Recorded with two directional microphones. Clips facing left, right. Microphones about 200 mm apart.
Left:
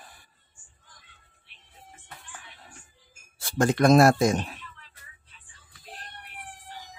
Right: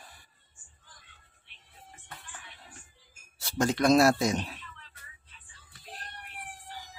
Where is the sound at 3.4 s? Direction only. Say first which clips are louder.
Left 4 dB; 50° left (ahead or behind).